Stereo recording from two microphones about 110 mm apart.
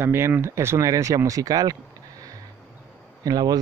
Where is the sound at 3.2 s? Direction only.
35° right (ahead or behind).